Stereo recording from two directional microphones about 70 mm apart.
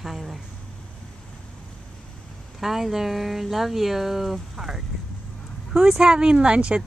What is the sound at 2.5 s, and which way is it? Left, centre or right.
Speech, centre.